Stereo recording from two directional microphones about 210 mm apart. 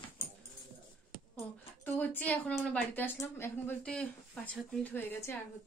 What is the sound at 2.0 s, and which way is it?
A woman's voice, 10° left (ahead or behind).